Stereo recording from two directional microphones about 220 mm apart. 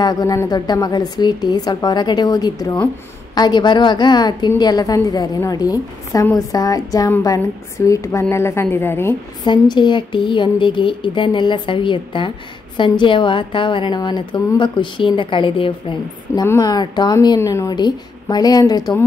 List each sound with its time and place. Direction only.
0.0 s a woman's voice: 15° left (ahead or behind)